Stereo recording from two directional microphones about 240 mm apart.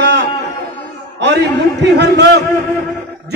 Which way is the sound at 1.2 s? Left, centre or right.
Right.